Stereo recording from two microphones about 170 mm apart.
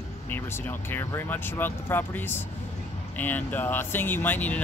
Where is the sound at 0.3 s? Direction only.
10° left (ahead or behind).